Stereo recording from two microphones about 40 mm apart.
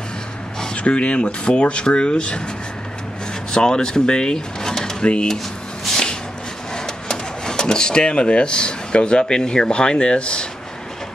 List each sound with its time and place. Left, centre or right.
0.7 s speech: left
3.5 s speech: centre
5.0 s speech: left
6.7 s speech: centre